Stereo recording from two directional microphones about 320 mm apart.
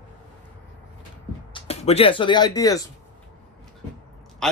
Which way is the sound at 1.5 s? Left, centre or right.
Centre.